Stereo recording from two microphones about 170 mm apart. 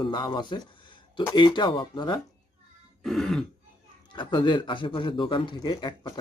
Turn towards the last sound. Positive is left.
turn(degrees=25)  # may be behind; listen again after turning